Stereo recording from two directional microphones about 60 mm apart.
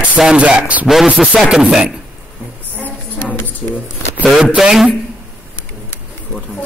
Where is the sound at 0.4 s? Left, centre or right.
Centre.